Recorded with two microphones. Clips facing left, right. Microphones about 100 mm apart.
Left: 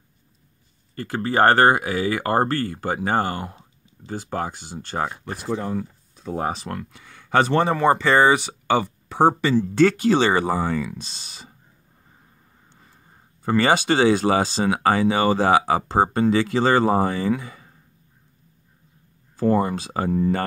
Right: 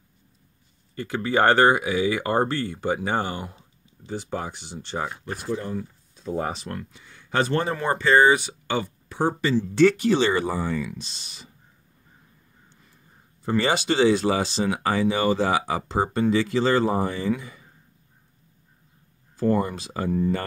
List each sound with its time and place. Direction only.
0.9 s speech: 40° left (ahead or behind)
5.2 s speech: 80° left
9.6 s speech: 45° left (ahead or behind)
10.0 s speech: 90° left
10.5 s speech: 75° left (ahead or behind)
10.8 s speech: 35° left (ahead or behind)
13.5 s speech: 80° left
14.2 s speech: 20° left (ahead or behind)
14.6 s speech: 80° left
19.4 s speech: 90° left